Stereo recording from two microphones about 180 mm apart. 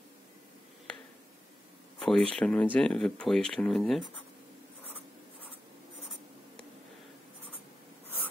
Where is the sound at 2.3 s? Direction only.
5° left (ahead or behind).